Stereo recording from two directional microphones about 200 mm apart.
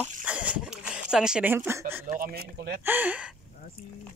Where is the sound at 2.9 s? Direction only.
10° right (ahead or behind).